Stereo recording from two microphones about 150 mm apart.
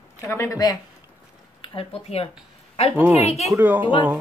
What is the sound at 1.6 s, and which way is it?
Speech, 40° left (ahead or behind).